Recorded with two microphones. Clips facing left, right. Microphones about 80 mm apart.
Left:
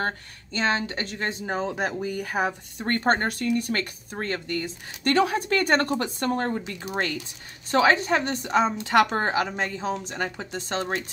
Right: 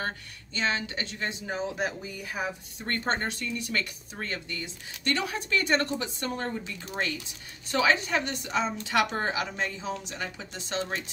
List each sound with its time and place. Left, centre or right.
0.0 s a woman's voice: left
7.7 s a woman's voice: left